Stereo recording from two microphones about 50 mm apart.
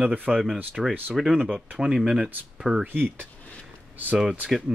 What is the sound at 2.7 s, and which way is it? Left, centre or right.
Speech, right.